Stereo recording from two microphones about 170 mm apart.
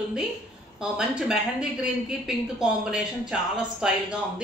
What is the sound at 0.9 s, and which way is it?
Speech, 5° right (ahead or behind).